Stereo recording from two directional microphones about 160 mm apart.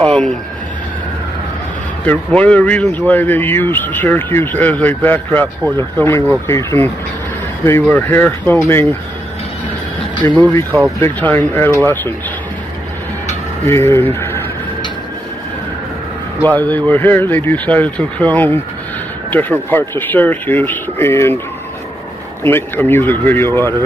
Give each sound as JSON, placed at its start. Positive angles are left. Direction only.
{"t": 0.0, "sound": "speech", "side_deg": 0}
{"t": 2.0, "sound": "speech", "side_deg": 10}
{"t": 10.2, "sound": "speech", "side_deg": 10}
{"t": 13.7, "sound": "speech", "side_deg": 15}
{"t": 16.4, "sound": "speech", "side_deg": 10}
{"t": 22.4, "sound": "speech", "side_deg": 15}